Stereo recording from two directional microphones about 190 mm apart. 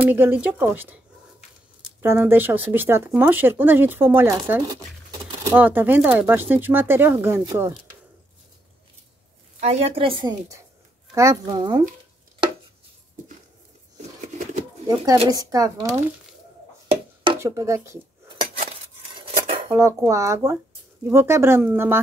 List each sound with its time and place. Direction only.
0.0 s speech: 10° right (ahead or behind)
2.0 s speech: 10° right (ahead or behind)
9.6 s a woman's voice: 35° right (ahead or behind)
15.2 s speech: 20° right (ahead or behind)
17.4 s speech: 15° right (ahead or behind)
18.6 s scissors: 30° right (ahead or behind)
19.7 s speech: 15° right (ahead or behind)